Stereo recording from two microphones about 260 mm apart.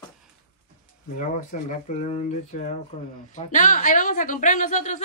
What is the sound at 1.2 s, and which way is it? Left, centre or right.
A woman's voice, left.